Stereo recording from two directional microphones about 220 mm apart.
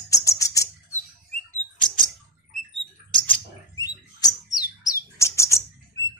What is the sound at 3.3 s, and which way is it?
Bird, 15° left (ahead or behind).